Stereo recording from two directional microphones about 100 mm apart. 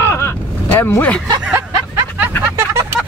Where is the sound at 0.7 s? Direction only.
20° left (ahead or behind).